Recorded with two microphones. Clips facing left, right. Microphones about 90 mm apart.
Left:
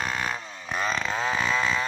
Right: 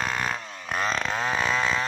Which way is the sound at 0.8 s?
Centre (ahead or behind).